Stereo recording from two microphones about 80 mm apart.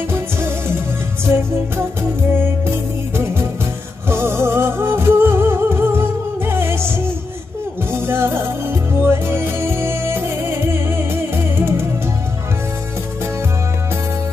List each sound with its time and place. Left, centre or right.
0.1 s music: right
2.6 s music: right
7.9 s music: right